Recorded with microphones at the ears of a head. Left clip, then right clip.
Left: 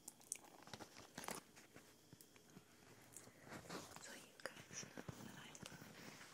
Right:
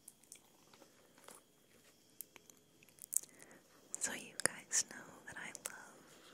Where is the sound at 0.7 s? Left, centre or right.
Left.